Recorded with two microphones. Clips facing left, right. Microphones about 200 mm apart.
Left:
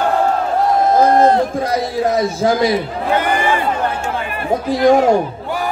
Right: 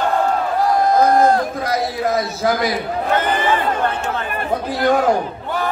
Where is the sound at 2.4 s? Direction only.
30° left (ahead or behind).